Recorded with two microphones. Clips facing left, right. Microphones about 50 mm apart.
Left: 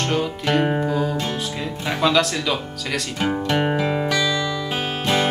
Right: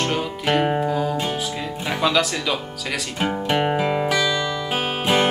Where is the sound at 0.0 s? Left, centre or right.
Centre.